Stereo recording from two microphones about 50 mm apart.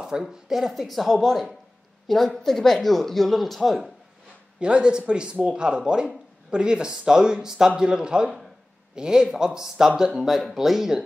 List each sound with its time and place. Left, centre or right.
0.2 s speech: centre
4.6 s speech: centre